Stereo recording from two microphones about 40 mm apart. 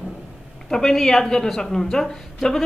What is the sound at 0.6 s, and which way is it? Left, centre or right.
A woman's voice, centre.